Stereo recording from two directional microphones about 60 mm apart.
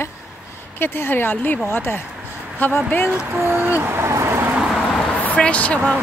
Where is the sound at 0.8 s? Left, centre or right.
Left.